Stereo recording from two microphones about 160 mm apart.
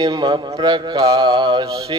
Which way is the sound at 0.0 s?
30° right (ahead or behind).